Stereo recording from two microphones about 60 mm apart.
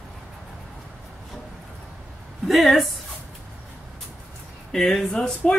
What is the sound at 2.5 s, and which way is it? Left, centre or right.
Speech, centre.